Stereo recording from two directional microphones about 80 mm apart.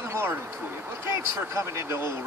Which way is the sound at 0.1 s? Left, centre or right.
Right.